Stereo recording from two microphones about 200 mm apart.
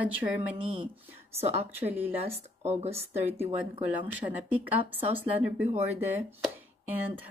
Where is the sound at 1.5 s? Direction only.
30° right (ahead or behind).